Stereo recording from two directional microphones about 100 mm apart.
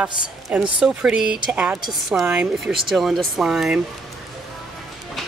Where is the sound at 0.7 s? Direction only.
10° right (ahead or behind).